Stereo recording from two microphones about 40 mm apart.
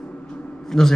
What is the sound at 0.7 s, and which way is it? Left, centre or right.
Speech, centre.